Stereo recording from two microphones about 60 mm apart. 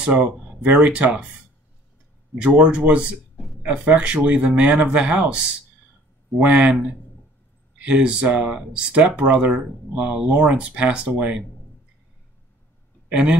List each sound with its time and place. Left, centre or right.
0.0 s speech: centre
2.3 s speech: centre
13.1 s speech: centre